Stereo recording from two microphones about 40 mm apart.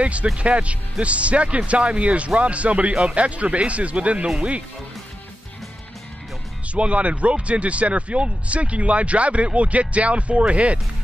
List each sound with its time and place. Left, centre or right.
0.0 s speech: right
6.7 s speech: right